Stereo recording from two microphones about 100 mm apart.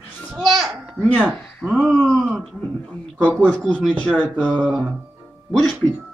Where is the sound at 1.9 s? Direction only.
5° left (ahead or behind).